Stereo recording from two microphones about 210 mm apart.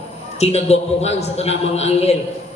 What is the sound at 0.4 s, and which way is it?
A man's voice, 30° left (ahead or behind).